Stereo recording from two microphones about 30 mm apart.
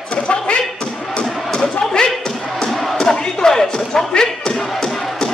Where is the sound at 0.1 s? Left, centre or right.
Left.